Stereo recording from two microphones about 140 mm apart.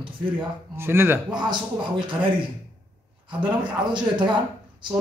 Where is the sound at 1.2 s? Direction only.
35° right (ahead or behind).